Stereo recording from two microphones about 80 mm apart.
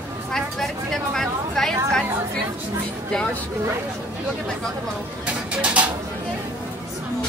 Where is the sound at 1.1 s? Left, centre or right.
Centre.